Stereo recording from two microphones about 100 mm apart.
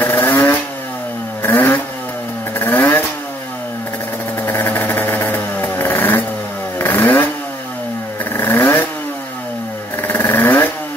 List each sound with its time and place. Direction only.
0.0 s vehicle: 20° left (ahead or behind)
4.4 s vehicle: 20° left (ahead or behind)
8.3 s vehicle: 25° left (ahead or behind)
10.0 s vehicle: 20° left (ahead or behind)